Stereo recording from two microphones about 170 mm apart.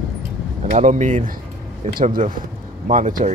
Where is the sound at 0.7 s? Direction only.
45° right (ahead or behind).